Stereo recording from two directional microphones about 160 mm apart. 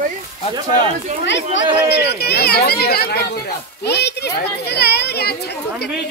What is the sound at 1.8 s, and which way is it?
Speech, 90° left.